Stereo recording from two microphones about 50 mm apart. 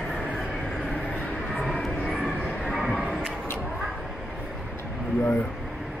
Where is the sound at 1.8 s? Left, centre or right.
Centre.